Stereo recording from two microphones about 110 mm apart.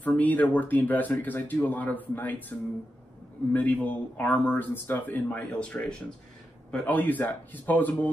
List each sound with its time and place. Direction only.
0.0 s speech: 15° left (ahead or behind)
3.5 s speech: 15° left (ahead or behind)